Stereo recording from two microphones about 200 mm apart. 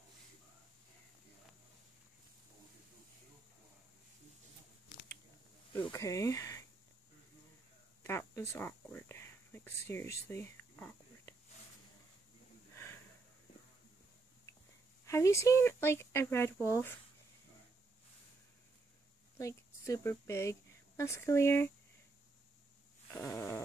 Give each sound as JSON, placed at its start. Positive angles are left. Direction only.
{"t": 5.8, "sound": "speech", "side_deg": 15}
{"t": 8.0, "sound": "a sound", "side_deg": 10}
{"t": 12.7, "sound": "sniff", "side_deg": 10}
{"t": 15.0, "sound": "speech", "side_deg": 15}
{"t": 19.3, "sound": "a woman's voice", "side_deg": 15}
{"t": 23.1, "sound": "speech", "side_deg": 10}